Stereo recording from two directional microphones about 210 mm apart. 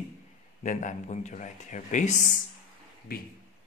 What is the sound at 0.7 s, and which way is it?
A man's voice, 35° left (ahead or behind).